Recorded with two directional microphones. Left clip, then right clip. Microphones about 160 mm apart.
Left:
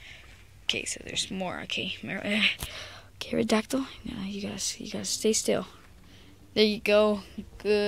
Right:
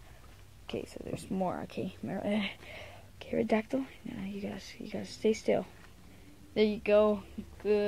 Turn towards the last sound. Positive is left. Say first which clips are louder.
# left 4 dB
turn(degrees=25)  # may be behind; listen again after turning